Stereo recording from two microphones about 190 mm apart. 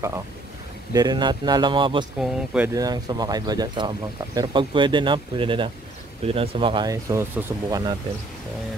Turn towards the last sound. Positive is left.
turn(degrees=-20)  # may be behind; listen again after turning